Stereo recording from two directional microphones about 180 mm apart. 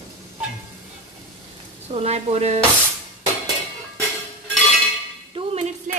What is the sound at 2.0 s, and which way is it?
Speech, 35° right (ahead or behind).